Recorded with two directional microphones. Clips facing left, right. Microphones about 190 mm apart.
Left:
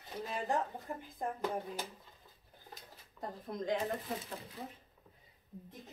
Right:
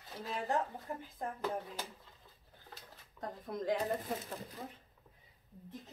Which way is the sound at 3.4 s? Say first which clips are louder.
Right 2 dB; centre (ahead or behind).